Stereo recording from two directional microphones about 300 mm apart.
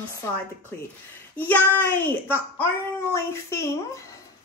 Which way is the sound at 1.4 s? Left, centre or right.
Centre.